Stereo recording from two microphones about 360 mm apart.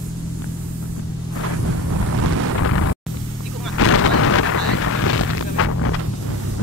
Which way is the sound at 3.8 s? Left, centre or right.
Left.